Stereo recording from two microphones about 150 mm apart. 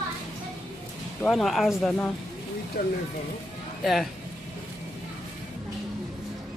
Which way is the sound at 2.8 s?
90° left.